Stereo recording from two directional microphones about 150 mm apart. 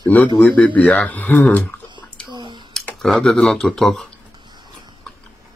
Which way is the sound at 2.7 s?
5° left (ahead or behind).